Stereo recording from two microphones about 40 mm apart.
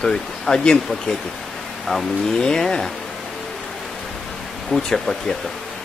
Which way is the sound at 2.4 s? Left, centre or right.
Centre.